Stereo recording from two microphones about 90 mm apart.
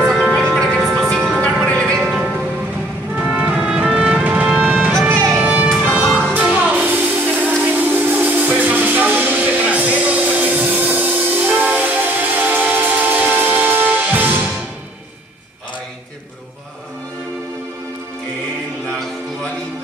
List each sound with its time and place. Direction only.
0.0 s music: centre (ahead or behind)
1.4 s music: 10° left (ahead or behind)
2.0 s music: 10° right (ahead or behind)
3.4 s music: 10° right (ahead or behind)
5.1 s music: 35° right (ahead or behind)
5.4 s music: 15° right (ahead or behind)